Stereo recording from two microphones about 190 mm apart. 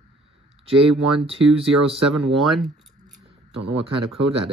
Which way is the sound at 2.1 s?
Centre (ahead or behind).